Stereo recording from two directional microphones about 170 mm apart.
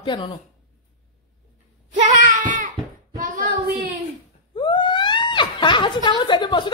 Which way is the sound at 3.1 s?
50° right (ahead or behind).